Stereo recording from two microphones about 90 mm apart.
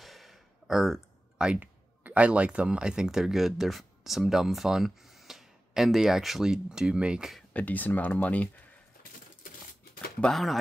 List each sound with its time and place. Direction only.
0.0 s gasp: centre (ahead or behind)
1.4 s speech: 15° right (ahead or behind)
7.5 s speech: 20° left (ahead or behind)
10.2 s speech: centre (ahead or behind)